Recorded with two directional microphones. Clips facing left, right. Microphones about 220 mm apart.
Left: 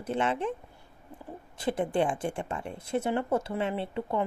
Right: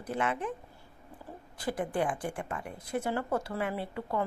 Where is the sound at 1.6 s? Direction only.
25° left (ahead or behind).